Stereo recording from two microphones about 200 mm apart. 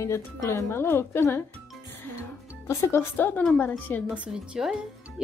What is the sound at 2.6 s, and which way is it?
A woman's voice, 15° left (ahead or behind).